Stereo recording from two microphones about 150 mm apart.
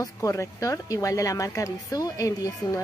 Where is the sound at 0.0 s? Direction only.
20° left (ahead or behind).